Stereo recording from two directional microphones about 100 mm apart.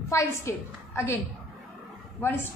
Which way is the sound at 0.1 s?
30° left (ahead or behind).